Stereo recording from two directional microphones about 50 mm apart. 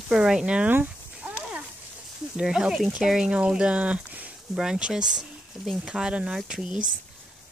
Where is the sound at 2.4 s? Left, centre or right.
Centre; by 4.3 s right.